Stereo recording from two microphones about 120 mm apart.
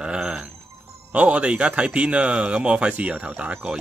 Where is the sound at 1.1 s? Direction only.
10° right (ahead or behind).